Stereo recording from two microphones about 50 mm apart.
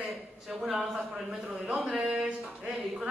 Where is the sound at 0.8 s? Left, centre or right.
Right.